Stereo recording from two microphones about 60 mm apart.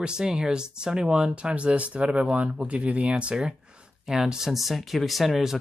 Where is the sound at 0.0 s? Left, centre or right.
Centre.